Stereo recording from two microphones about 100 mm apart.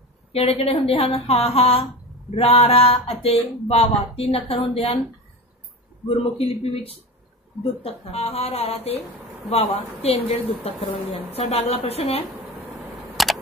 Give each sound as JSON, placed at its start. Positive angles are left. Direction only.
{"t": 0.3, "sound": "speech", "side_deg": 80}
{"t": 2.3, "sound": "speech", "side_deg": 80}
{"t": 6.0, "sound": "a man's voice", "side_deg": 75}
{"t": 12.7, "sound": "a sound", "side_deg": 0}